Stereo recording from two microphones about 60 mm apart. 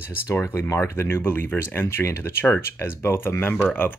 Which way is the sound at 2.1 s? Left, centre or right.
Left.